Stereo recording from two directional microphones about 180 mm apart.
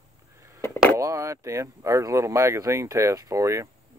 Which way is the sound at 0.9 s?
15° right (ahead or behind).